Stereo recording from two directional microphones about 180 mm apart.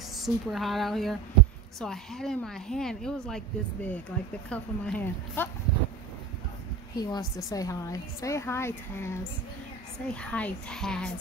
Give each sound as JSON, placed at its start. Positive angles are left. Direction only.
{"t": 0.2, "sound": "a woman's voice", "side_deg": 0}
{"t": 7.0, "sound": "a woman's voice", "side_deg": 20}